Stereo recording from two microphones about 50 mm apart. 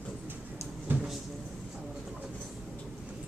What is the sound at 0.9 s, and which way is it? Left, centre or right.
Cupboard open or close, right.